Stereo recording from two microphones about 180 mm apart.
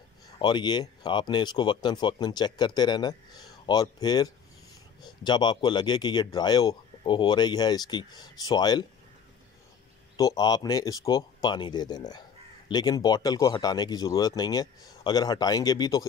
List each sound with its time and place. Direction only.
0.4 s speech: 25° left (ahead or behind)
10.1 s speech: 20° left (ahead or behind)